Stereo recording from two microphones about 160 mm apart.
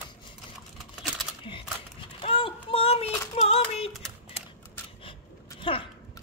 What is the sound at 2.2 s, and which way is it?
Child singing, 35° left (ahead or behind).